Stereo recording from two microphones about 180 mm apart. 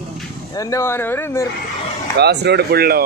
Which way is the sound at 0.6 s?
15° left (ahead or behind).